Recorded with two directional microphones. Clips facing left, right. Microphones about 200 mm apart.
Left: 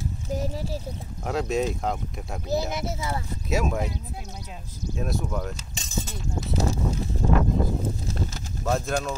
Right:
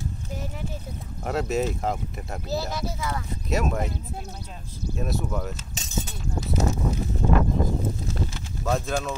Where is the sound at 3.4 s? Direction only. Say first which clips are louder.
Even; centre (ahead or behind).